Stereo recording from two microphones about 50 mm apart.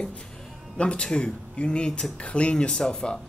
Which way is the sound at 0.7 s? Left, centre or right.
Left.